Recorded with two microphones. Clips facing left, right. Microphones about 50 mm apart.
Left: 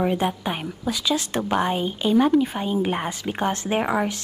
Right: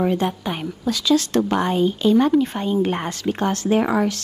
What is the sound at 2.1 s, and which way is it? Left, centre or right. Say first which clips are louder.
Speech: right 1 dB; centre.